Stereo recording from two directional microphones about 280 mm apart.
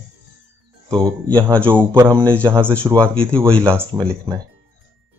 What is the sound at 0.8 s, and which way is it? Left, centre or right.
Speech, centre.